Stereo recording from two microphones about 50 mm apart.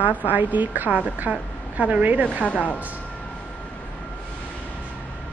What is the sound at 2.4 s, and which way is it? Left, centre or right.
Speech, left.